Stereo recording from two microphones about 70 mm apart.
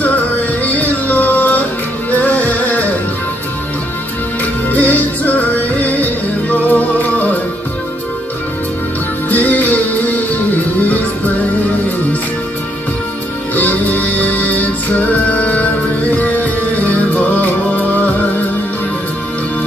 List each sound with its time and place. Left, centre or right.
0.7 s music: left
4.6 s music: left
9.3 s music: left
13.6 s music: left